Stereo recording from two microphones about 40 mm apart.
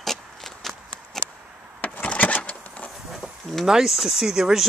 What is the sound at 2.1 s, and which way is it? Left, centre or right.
Vehicle, left.